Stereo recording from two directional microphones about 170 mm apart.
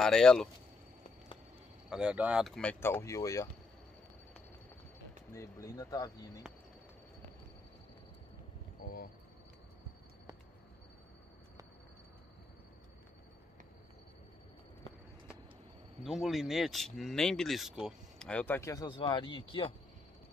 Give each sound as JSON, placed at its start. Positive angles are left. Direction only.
{"t": 0.0, "sound": "speech", "side_deg": 5}
{"t": 1.9, "sound": "speech", "side_deg": -5}
{"t": 5.3, "sound": "speech", "side_deg": 15}
{"t": 8.8, "sound": "speech", "side_deg": 60}
{"t": 16.0, "sound": "speech", "side_deg": 0}
{"t": 18.3, "sound": "speech", "side_deg": 10}